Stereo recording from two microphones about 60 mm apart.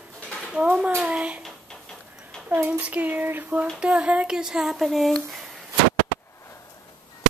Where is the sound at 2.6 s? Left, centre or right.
Right.